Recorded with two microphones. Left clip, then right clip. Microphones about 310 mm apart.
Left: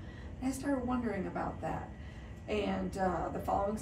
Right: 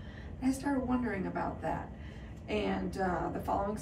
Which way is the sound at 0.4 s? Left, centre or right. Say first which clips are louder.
Right 2 dB; centre.